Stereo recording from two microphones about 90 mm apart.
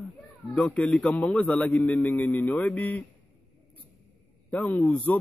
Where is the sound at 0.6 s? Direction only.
15° left (ahead or behind).